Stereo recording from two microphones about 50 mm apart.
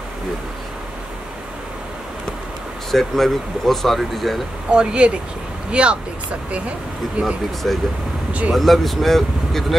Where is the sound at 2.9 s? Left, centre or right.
Centre.